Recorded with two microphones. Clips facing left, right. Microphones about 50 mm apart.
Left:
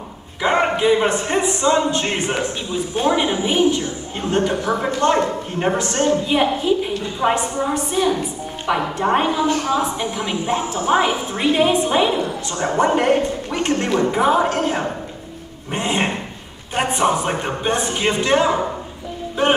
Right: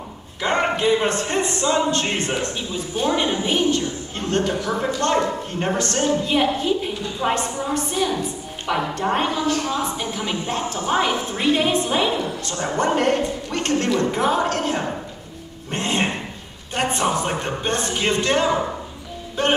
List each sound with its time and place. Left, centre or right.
0.4 s a woman's voice: centre
7.2 s a woman's voice: left
7.6 s a woman's voice: centre
15.7 s a sound: centre
16.7 s a woman's voice: centre